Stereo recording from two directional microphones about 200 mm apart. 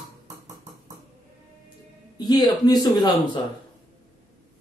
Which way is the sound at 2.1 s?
20° left (ahead or behind).